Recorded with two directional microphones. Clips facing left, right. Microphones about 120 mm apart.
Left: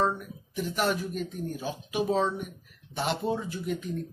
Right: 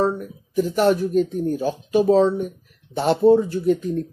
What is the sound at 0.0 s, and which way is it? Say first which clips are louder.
Speech: right 6 dB; 40° right (ahead or behind).